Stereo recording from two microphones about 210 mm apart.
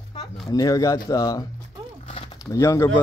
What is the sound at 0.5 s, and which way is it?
Speech, 15° left (ahead or behind).